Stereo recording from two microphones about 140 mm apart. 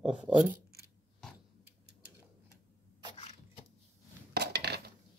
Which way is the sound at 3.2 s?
40° left (ahead or behind).